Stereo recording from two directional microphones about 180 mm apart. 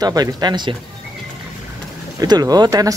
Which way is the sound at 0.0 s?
20° right (ahead or behind).